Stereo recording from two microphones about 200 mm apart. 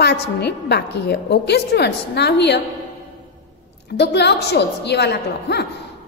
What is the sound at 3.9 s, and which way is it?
A woman's voice, 55° left (ahead or behind).